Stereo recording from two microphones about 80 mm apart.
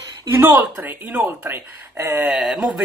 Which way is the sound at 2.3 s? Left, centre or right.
Centre.